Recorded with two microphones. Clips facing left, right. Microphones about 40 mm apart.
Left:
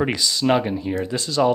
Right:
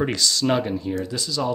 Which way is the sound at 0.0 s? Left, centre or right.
Centre.